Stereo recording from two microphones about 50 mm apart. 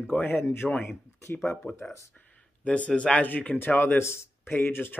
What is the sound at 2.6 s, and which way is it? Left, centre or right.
Speech, left.